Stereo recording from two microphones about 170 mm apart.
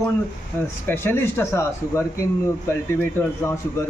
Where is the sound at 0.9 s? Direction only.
15° left (ahead or behind).